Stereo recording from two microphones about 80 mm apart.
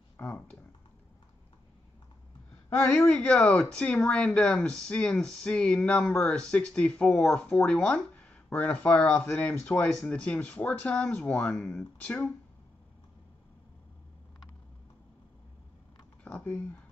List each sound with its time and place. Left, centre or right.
0.2 s speech: left
2.9 s speech: centre; by 9.7 s left
10.0 s speech: centre
16.3 s speech: left